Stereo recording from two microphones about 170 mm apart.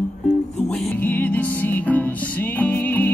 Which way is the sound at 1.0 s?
10° left (ahead or behind).